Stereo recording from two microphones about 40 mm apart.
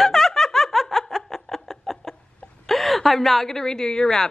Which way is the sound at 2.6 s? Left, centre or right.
Centre.